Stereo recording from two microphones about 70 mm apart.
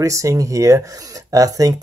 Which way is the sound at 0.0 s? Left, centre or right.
Right.